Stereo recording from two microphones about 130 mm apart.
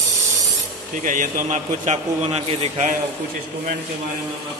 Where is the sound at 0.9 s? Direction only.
90° right; by 2.9 s 55° right (ahead or behind).